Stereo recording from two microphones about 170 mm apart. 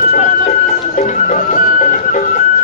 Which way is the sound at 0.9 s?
50° left (ahead or behind).